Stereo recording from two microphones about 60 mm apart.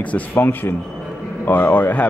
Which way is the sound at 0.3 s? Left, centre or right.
Left.